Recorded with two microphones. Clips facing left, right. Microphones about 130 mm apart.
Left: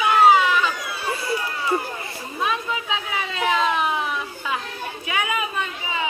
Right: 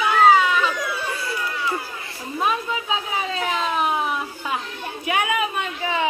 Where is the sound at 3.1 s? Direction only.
40° right (ahead or behind).